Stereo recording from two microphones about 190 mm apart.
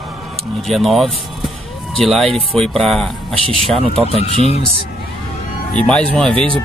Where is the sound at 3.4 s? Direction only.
30° right (ahead or behind).